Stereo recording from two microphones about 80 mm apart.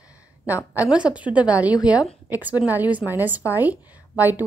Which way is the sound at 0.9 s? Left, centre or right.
Centre.